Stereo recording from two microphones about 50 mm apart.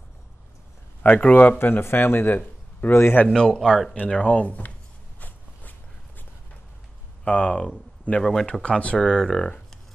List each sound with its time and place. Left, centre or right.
1.0 s speech: left
1.6 s speech: left
3.3 s speech: centre
4.1 s speech: left
5.2 s a sound: left
7.2 s speech: left
8.2 s speech: centre
8.6 s speech: left
8.9 s speech: centre